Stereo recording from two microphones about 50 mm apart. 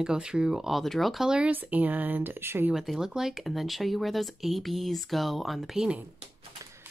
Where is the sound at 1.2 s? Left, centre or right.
Centre.